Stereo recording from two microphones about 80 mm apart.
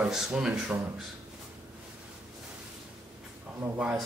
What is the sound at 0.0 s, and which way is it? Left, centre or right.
Speech, centre.